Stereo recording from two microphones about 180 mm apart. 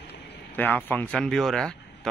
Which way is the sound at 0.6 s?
10° left (ahead or behind).